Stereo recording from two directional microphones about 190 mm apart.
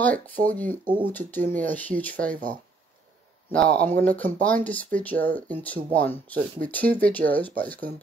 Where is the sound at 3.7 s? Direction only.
10° left (ahead or behind).